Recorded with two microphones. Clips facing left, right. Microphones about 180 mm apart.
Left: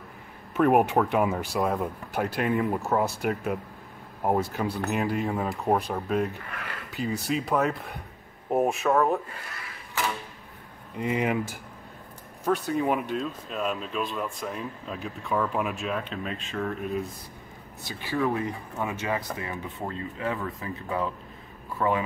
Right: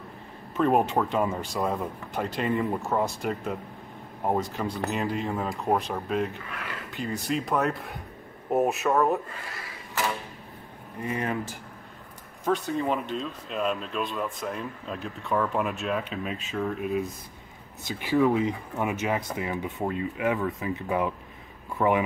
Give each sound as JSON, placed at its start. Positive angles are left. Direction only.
{"t": 0.6, "sound": "speech", "side_deg": 10}
{"t": 11.0, "sound": "speech", "side_deg": 15}
{"t": 12.4, "sound": "speech", "side_deg": 0}
{"t": 17.8, "sound": "speech", "side_deg": -15}